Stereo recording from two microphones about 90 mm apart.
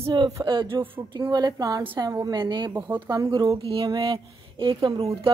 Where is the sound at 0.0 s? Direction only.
65° right (ahead or behind).